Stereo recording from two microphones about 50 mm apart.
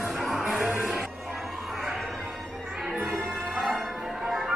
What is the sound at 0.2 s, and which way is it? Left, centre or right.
Music, centre.